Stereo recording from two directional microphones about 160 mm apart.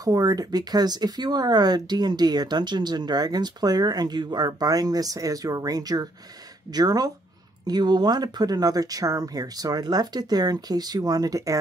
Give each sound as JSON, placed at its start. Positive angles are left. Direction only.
{"t": 0.0, "sound": "speech", "side_deg": -25}